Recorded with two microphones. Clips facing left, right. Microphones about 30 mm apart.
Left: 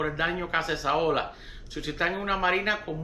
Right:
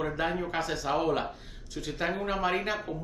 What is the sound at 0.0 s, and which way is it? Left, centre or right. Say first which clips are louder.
Speech: left 2 dB; left.